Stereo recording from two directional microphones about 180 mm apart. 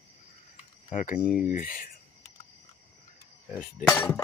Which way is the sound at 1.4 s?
50° left (ahead or behind).